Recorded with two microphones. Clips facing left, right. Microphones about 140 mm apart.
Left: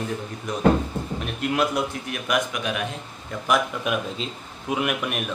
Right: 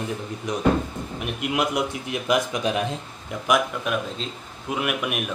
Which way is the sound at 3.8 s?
5° left (ahead or behind).